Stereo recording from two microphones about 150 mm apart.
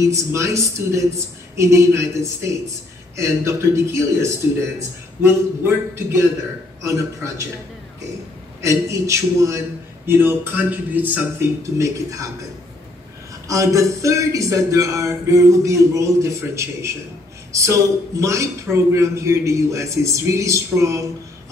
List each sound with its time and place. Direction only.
0.0 s a man's voice: 20° right (ahead or behind)
6.8 s a man's voice: 20° right (ahead or behind)
8.5 s a man's voice: 20° right (ahead or behind)
13.5 s a man's voice: 20° right (ahead or behind)